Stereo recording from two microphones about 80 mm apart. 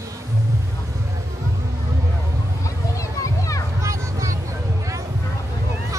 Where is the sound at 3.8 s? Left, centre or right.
Right.